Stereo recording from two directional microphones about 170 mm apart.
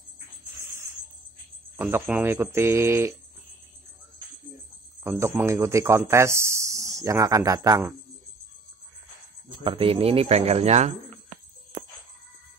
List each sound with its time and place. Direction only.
0.6 s music: 15° right (ahead or behind)
1.8 s speech: 10° right (ahead or behind)
5.0 s speech: 15° right (ahead or behind)
9.5 s speech: 30° right (ahead or behind)
11.7 s music: 45° right (ahead or behind)